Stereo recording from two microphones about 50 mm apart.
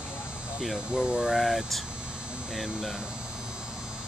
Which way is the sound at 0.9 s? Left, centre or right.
Centre.